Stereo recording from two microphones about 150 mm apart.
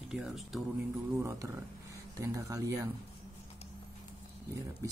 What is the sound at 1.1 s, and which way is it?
Speech, 20° right (ahead or behind).